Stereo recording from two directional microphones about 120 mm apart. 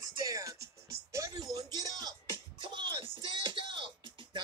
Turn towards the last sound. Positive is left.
turn(degrees=-40)  # may be behind; listen again after turning